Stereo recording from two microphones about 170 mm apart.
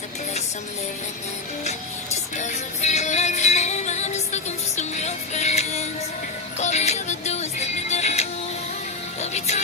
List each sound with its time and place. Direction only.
2.3 s music: 45° left (ahead or behind)